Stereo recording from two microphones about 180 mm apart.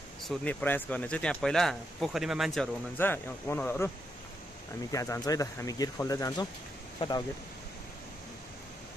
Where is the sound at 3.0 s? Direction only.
10° left (ahead or behind).